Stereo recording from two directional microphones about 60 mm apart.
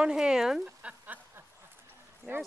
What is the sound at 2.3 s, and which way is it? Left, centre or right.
Speech, right.